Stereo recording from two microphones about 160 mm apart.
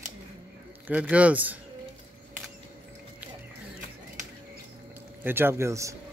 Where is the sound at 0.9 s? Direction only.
10° right (ahead or behind).